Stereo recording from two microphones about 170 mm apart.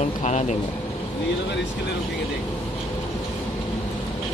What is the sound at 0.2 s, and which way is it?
Speech, 45° left (ahead or behind).